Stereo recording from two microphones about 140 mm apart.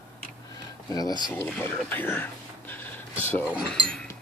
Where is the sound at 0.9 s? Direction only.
30° left (ahead or behind).